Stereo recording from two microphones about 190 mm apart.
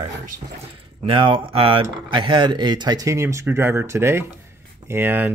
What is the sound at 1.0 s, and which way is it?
Speech, 25° right (ahead or behind).